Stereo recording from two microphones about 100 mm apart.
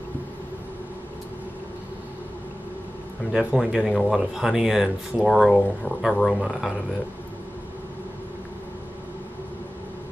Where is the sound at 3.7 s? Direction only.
5° right (ahead or behind).